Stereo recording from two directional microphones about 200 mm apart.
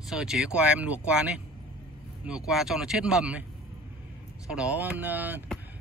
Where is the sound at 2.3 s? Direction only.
Centre (ahead or behind).